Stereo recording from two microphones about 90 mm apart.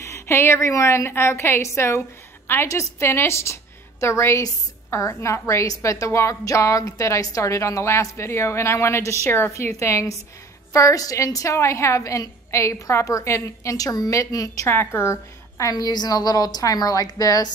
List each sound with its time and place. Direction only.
0.0 s a woman's voice: 30° left (ahead or behind)
14.7 s a woman's voice: 25° left (ahead or behind)
15.7 s a woman's voice: 50° left (ahead or behind)